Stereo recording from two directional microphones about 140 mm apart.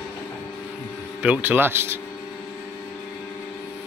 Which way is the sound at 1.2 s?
10° right (ahead or behind).